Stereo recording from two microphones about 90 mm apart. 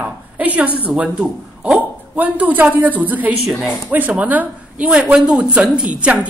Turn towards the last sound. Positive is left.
turn(degrees=-15)  # may be behind; listen again after turning